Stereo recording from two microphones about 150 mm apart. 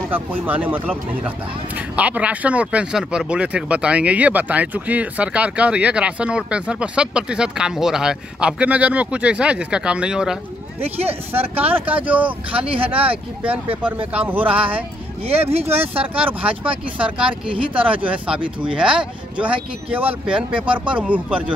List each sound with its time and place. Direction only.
0.1 s speech: 10° right (ahead or behind)
10.8 s speech: 40° right (ahead or behind)
11.6 s speech: 10° right (ahead or behind)
12.5 s speech: 40° right (ahead or behind)
14.1 s speech: 10° right (ahead or behind)
16.2 s speech: 10° right (ahead or behind)